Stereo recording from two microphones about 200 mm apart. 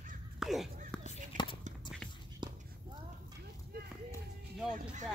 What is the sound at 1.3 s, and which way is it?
Whispering, 40° right (ahead or behind).